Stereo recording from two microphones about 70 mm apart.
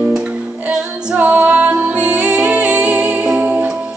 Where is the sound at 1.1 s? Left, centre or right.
Right.